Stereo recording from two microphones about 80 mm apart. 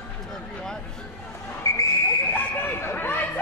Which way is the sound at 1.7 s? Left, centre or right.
Left.